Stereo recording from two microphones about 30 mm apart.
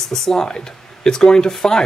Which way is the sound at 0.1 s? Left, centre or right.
Centre.